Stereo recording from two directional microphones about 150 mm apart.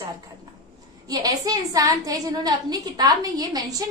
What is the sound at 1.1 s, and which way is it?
A woman's voice, 25° right (ahead or behind).